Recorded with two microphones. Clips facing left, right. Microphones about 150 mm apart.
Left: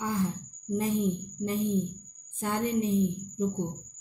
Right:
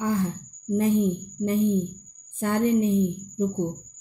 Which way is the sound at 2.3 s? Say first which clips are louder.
Right 7 dB; 60° right (ahead or behind).